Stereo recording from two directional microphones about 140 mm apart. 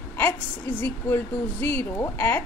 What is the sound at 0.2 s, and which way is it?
A woman's voice, 15° left (ahead or behind).